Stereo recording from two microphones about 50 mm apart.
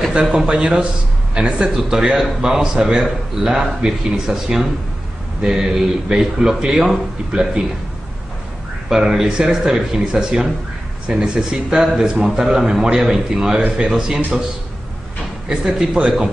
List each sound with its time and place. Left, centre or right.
0.1 s a man's voice: centre
8.8 s a man's voice: centre
15.6 s a man's voice: centre